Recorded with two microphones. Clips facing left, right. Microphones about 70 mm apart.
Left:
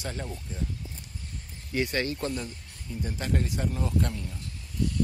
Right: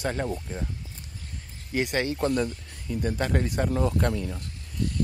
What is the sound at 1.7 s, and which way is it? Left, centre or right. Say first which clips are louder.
Speech: right 2 dB; right.